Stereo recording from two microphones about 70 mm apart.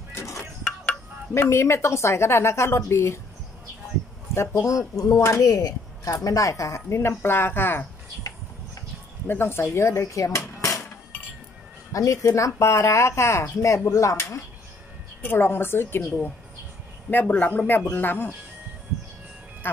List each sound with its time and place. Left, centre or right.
0.1 s music: left
1.3 s a woman's voice: left
4.3 s speech: left
5.2 s speech: left
9.3 s a woman's voice: left
11.9 s speech: left
15.2 s a woman's voice: left
17.1 s a man's voice: left
19.6 s speech: left